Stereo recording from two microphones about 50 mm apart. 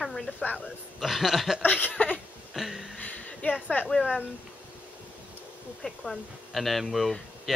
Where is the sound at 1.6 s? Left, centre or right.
Left.